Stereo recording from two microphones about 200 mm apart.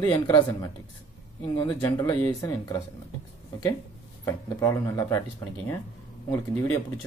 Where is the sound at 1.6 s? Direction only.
10° left (ahead or behind).